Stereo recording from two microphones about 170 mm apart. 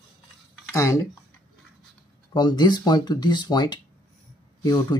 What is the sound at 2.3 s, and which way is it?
Speech, 25° left (ahead or behind).